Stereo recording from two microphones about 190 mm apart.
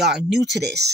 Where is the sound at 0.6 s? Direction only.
60° right (ahead or behind).